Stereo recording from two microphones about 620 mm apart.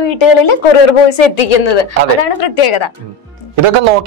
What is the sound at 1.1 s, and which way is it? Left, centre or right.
Speech, left.